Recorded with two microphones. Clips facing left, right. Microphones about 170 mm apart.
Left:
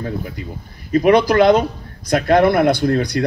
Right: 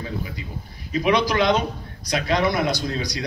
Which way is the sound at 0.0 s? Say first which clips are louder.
Left 5 dB; 50° left (ahead or behind).